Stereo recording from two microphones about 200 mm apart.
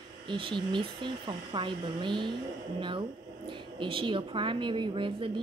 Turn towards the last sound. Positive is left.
turn(degrees=-25)  # may be behind; listen again after turning